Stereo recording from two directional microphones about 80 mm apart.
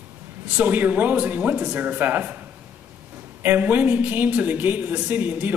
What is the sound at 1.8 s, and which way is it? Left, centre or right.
Speech, right.